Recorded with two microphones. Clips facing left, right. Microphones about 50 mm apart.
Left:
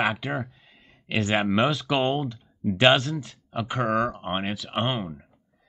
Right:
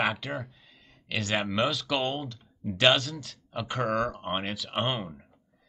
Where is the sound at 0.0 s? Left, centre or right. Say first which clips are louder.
Left 3 dB; centre.